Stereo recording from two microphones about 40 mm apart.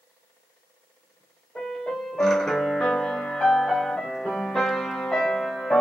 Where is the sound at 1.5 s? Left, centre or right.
Left.